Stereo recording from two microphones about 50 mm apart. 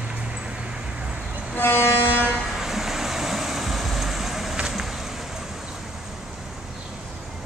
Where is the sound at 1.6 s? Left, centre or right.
Left.